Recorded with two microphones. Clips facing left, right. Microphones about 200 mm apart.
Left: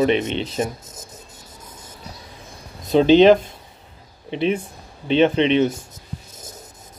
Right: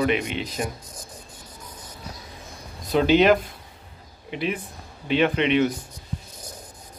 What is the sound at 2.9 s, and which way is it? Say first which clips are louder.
Speech: left 6 dB; 25° left (ahead or behind).